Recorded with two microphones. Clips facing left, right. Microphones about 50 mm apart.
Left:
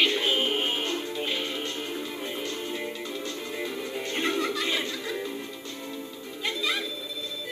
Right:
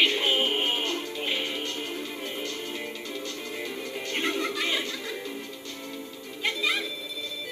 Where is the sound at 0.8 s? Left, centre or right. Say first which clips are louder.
Left 1 dB; centre.